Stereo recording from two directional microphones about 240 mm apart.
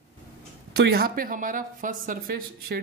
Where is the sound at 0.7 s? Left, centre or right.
Right.